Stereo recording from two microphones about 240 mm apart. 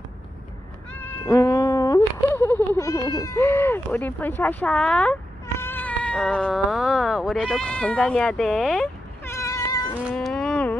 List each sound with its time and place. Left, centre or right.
1.0 s cat: centre
3.2 s speech: centre
10.0 s livestock: centre